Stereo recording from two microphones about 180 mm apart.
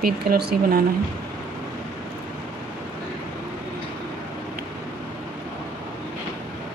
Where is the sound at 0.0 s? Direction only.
60° right (ahead or behind).